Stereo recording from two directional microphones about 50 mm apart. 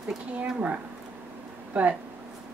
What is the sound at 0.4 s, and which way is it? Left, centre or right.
Speech, right.